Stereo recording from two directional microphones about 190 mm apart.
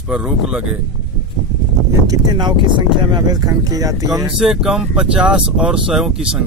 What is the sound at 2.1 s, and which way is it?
Speech, 25° right (ahead or behind).